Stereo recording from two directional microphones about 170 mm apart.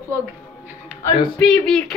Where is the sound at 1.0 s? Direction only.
5° left (ahead or behind).